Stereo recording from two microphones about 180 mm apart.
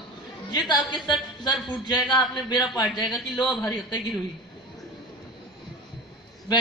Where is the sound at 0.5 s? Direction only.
20° left (ahead or behind).